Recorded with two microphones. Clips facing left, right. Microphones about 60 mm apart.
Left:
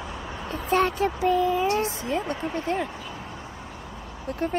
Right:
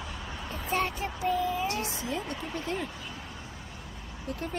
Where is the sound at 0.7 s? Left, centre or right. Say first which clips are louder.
Left 8 dB; left.